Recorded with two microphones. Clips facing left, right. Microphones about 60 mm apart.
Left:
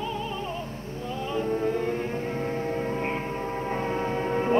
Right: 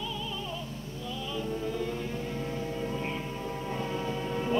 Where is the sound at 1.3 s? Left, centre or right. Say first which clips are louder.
Left 8 dB; left.